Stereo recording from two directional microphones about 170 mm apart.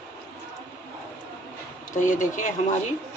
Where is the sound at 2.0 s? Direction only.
50° left (ahead or behind).